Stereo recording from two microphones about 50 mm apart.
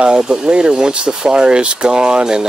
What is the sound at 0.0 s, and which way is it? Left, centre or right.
Speech, centre.